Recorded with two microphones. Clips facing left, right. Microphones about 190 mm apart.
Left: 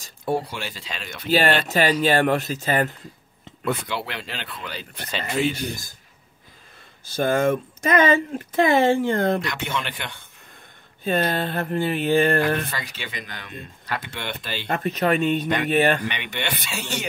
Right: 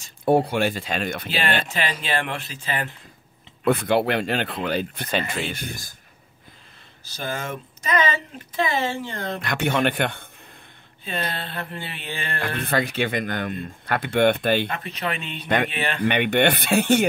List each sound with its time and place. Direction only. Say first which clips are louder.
0.2 s speech: right 7 dB; 55° right (ahead or behind)
1.6 s speech: left 8 dB; 40° left (ahead or behind)
3.6 s speech: right 7 dB; 55° right (ahead or behind)
7.1 s speech: left 10 dB; 50° left (ahead or behind)
9.4 s speech: right 6 dB; 55° right (ahead or behind)
11.1 s speech: left 7 dB; 45° left (ahead or behind)
12.6 s speech: right 11 dB; 55° right (ahead or behind)
14.7 s speech: left 7 dB; 45° left (ahead or behind)
16.1 s speech: right 10 dB; 55° right (ahead or behind)